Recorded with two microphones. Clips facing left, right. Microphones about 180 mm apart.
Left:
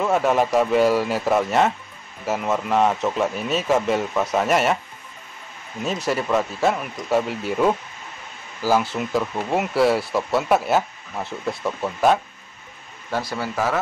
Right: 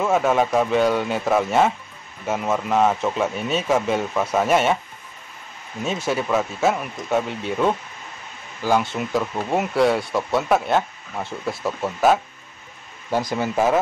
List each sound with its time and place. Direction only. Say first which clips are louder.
0.0 s speech: even; centre (ahead or behind)
6.0 s speech: even; centre (ahead or behind)
13.1 s speech: right 4 dB; 15° right (ahead or behind)